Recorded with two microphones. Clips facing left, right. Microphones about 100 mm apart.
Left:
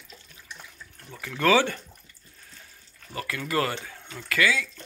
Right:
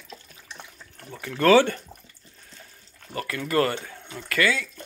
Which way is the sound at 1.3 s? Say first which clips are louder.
Right 4 dB; 45° right (ahead or behind).